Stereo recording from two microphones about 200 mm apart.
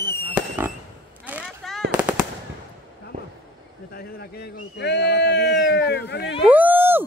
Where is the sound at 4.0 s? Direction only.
50° left (ahead or behind).